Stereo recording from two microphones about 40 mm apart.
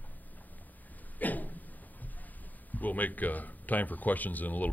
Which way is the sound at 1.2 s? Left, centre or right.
Left.